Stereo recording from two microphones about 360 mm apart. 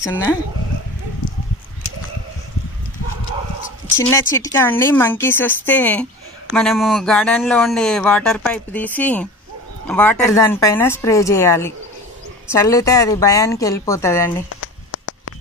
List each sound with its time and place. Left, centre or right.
0.0 s a woman's voice: centre
3.8 s a woman's voice: centre
14.6 s a sound: left